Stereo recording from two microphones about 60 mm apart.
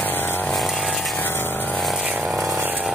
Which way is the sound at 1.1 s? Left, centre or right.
Left.